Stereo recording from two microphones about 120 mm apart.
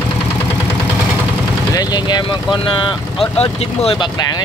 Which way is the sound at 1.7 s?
35° left (ahead or behind).